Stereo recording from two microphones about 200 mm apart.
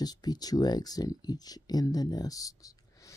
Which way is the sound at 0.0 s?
20° left (ahead or behind).